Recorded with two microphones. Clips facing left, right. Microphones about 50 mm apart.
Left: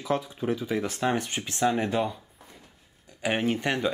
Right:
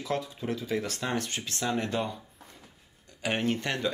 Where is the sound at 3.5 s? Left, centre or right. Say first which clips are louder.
Left 4 dB; centre.